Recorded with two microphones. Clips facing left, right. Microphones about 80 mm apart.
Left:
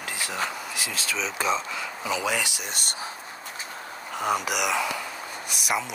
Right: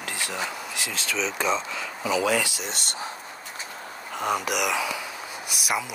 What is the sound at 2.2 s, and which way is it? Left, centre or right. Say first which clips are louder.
Speech: right 4 dB; centre.